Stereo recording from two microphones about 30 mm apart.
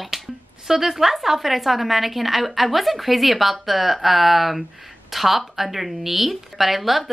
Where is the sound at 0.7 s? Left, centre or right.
Centre.